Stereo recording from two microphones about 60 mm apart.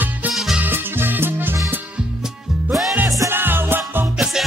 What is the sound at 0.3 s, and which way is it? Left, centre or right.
Music, centre.